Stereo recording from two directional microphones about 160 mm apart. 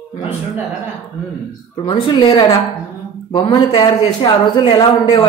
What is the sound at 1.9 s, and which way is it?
Speech, 30° left (ahead or behind).